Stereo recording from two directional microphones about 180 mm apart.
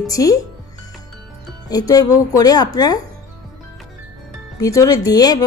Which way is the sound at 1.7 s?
20° left (ahead or behind).